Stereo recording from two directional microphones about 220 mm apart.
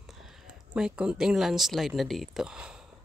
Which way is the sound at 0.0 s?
Centre (ahead or behind).